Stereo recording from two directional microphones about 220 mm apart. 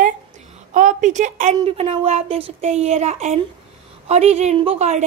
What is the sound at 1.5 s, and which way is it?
Speech, 25° right (ahead or behind).